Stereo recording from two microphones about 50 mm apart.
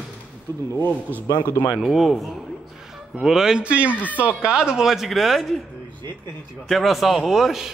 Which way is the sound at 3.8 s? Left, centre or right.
Left.